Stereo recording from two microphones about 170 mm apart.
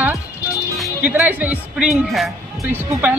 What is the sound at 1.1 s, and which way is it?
A woman's voice, 10° right (ahead or behind).